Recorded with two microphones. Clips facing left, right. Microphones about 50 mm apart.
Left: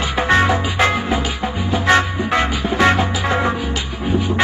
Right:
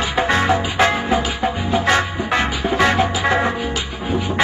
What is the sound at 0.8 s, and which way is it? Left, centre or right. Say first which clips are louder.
Salsa music: right 1 dB; right.